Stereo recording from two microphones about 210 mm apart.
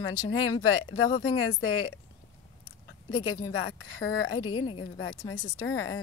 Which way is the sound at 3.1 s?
20° left (ahead or behind).